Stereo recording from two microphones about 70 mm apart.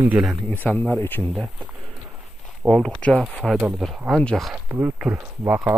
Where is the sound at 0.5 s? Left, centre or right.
Left.